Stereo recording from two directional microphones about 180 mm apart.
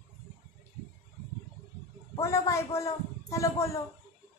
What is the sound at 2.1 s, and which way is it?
A man's voice, 15° left (ahead or behind).